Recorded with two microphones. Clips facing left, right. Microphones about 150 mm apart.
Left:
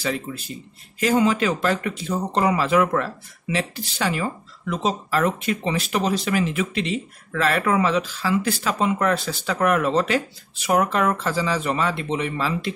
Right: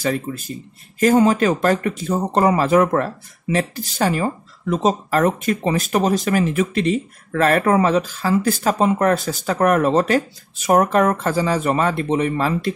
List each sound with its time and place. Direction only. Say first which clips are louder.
0.0 s speech: right 4 dB; 45° right (ahead or behind)